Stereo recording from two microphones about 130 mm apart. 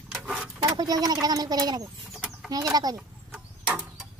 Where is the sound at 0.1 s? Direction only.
Centre (ahead or behind).